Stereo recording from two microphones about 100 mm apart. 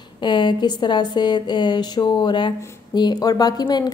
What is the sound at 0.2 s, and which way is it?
A woman's voice, 50° left (ahead or behind).